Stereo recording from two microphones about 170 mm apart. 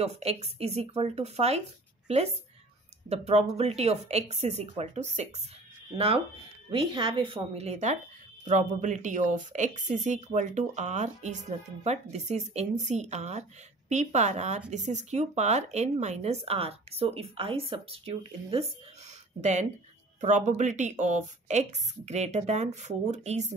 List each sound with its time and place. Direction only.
0.0 s speech: 40° right (ahead or behind)
3.1 s a woman's voice: 40° right (ahead or behind)